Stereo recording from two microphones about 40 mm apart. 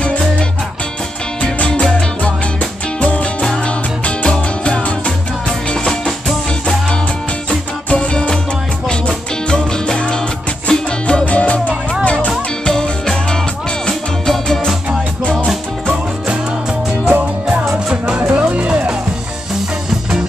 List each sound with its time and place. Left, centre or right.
0.0 s music: left
3.0 s music: left
7.4 s music: left
11.2 s music: left
12.6 s music: centre
17.1 s music: right